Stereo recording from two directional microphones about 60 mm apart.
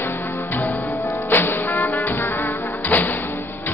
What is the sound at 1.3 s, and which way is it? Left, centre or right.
Music, left.